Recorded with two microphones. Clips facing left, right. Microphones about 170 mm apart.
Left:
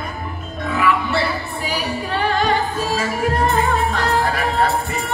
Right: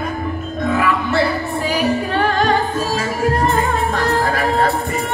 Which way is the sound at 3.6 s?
45° right (ahead or behind).